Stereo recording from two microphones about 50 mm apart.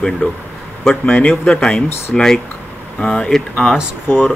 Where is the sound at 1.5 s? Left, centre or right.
Centre.